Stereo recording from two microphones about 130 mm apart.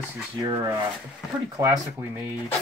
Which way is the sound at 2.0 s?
15° right (ahead or behind).